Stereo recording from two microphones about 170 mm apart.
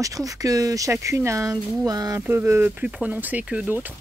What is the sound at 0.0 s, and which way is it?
Speech, 20° right (ahead or behind).